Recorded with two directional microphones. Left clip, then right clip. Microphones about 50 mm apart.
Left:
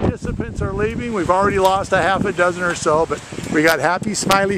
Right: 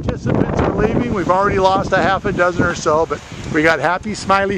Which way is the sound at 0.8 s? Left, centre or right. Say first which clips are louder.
Right 3 dB; centre.